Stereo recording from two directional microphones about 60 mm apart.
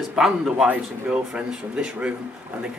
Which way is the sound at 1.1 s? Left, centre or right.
Centre.